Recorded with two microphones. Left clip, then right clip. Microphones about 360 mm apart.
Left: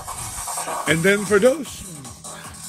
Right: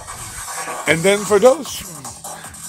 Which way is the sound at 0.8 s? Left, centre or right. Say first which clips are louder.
Right 3 dB; centre.